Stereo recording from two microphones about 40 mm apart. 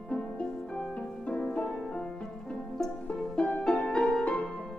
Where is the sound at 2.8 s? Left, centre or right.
Centre.